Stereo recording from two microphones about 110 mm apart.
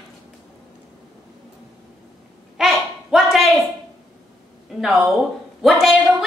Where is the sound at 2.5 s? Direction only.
Centre (ahead or behind).